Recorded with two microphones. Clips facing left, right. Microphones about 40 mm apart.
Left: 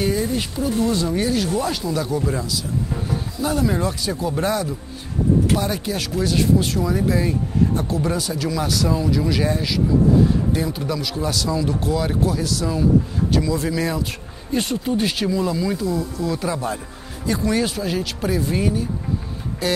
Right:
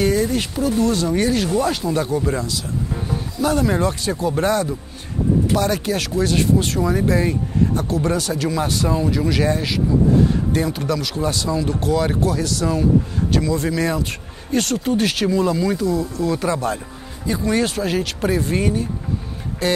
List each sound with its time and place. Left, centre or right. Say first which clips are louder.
0.0 s speech: right 3 dB; right
3.4 s speech: right 3 dB; right
5.5 s speech: right 3 dB; right
11.1 s speech: right 1 dB; right
11.8 s speech: right 2 dB; right
15.2 s speech: right 3 dB; right
15.8 s speech: right 3 dB; right